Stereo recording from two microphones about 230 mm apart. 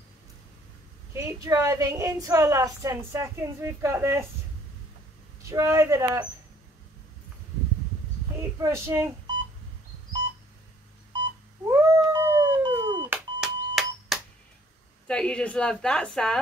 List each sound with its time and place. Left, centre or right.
1.1 s a woman's voice: centre
5.4 s a woman's voice: centre
8.4 s a woman's voice: centre
11.6 s cat: centre
13.4 s a sound: centre
15.0 s a woman's voice: centre